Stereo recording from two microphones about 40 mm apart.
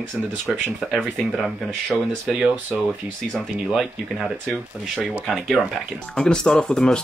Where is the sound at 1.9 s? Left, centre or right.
Left.